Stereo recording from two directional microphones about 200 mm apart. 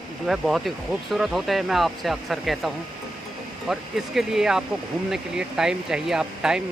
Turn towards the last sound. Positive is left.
turn(degrees=-5)  # may be behind; listen again after turning